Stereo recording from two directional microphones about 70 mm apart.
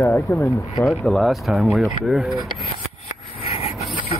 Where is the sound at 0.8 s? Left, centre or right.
Centre.